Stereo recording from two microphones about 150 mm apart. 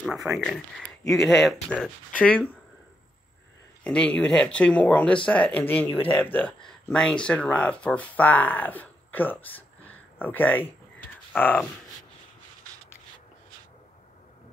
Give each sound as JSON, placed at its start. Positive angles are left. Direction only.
{"t": 0.3, "sound": "speech", "side_deg": 5}
{"t": 3.8, "sound": "speech", "side_deg": 5}